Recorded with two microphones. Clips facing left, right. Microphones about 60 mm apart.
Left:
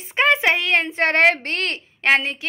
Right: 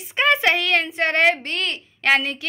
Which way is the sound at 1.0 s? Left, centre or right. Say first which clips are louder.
Left 3 dB; left.